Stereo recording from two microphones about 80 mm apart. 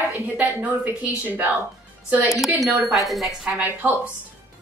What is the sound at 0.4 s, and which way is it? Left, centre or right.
A woman's voice, right.